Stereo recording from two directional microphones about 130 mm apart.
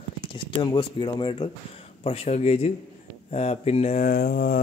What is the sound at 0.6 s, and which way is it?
Speech, 35° left (ahead or behind).